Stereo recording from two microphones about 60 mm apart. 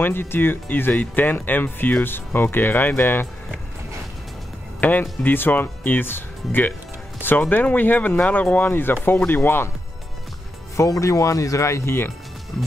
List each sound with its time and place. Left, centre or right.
0.0 s speech: left
4.7 s speech: left
10.8 s speech: left
12.5 s speech: centre